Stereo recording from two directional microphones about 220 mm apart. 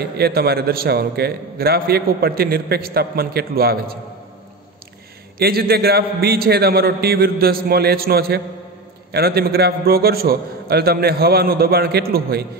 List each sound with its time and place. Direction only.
0.0 s a man's voice: 45° right (ahead or behind)
5.4 s a man's voice: 45° right (ahead or behind)